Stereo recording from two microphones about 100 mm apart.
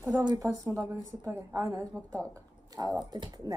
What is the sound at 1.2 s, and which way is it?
Speech, 30° right (ahead or behind).